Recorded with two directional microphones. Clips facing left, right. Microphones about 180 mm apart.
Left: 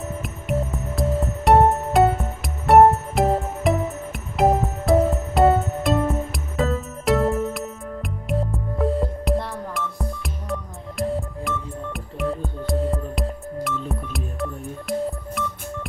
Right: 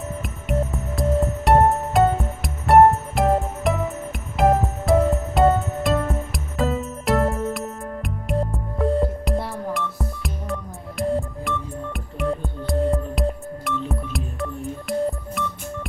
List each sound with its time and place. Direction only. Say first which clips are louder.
0.2 s music: right 1 dB; centre (ahead or behind)